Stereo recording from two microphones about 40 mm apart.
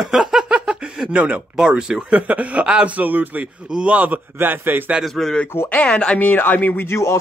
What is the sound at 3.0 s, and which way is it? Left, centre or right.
Speech, right.